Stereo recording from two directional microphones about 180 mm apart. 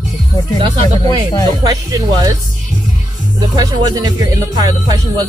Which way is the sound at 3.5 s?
20° right (ahead or behind).